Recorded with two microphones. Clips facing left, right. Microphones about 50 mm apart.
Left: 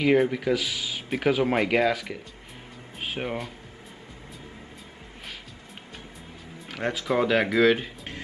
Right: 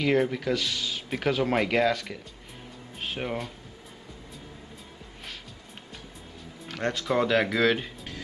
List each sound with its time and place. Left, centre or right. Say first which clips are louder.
0.0 s speech: left 3 dB; centre
6.7 s speech: left 1 dB; centre